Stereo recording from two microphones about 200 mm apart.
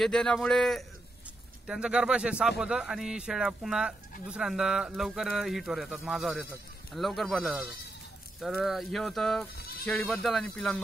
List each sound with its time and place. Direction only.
0.0 s speech: 5° left (ahead or behind)
9.6 s bleat: 50° left (ahead or behind)
9.8 s speech: 5° left (ahead or behind)